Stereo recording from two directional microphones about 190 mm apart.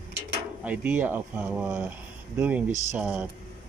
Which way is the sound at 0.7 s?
10° right (ahead or behind).